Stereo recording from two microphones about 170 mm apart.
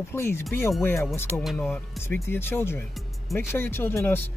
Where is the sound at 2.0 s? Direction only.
15° left (ahead or behind).